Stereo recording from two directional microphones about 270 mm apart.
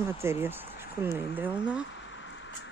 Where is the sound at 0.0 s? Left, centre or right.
Centre.